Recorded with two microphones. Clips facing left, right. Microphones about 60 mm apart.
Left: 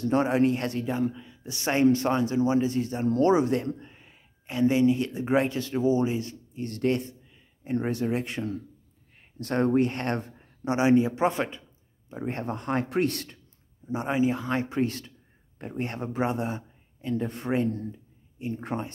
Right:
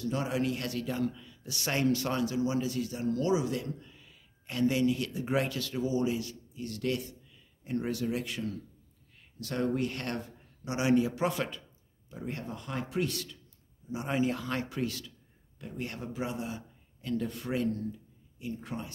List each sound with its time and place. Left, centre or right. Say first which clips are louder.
0.0 s a man's voice: left 8 dB; left
4.5 s a man's voice: left 6 dB; left
13.8 s speech: left 6 dB; left
14.1 s a man's voice: left 5 dB; left
17.0 s speech: left 4 dB; left